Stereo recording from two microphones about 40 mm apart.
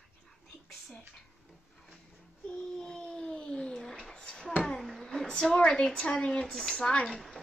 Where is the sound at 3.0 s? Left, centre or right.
Left.